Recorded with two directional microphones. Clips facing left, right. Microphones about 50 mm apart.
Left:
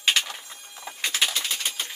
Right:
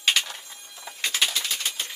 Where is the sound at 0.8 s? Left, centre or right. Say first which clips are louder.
Even; centre.